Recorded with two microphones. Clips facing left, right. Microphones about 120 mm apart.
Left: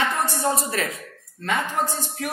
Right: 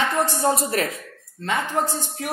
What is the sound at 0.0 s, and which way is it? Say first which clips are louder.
Speech: right 2 dB; 30° right (ahead or behind).